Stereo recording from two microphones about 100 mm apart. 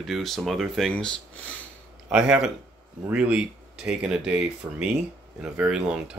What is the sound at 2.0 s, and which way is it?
Speech, 10° right (ahead or behind).